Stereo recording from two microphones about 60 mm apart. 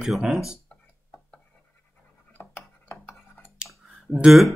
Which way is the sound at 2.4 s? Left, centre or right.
Left.